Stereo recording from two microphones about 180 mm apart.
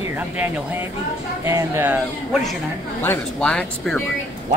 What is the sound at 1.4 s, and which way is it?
Speech, 15° right (ahead or behind).